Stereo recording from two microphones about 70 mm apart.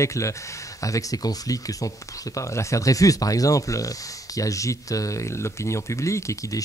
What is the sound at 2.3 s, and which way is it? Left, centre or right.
Speech, left.